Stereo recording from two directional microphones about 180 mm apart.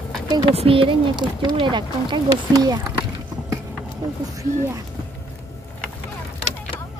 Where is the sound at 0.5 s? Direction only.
30° right (ahead or behind).